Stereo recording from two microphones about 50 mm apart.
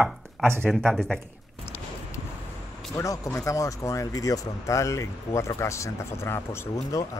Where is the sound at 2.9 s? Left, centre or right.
Left.